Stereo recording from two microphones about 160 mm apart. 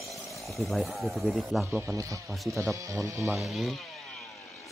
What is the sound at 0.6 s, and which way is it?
Speech, centre (ahead or behind).